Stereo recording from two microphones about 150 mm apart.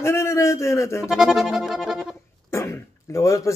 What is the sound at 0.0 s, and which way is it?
Speech, 15° left (ahead or behind).